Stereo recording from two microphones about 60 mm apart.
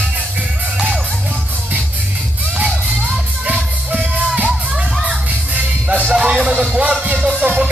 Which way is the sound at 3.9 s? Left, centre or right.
Centre.